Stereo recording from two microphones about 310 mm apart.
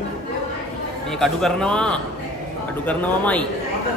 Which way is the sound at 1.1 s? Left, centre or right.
Centre.